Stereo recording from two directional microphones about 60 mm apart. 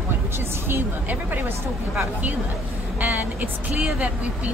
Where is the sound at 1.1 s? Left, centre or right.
Right.